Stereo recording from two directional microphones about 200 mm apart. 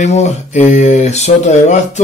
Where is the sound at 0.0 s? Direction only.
35° left (ahead or behind).